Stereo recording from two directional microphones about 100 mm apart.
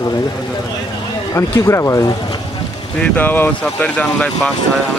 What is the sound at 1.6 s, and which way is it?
Speech, 30° left (ahead or behind).